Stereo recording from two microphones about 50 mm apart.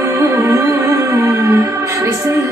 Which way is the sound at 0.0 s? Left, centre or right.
Right.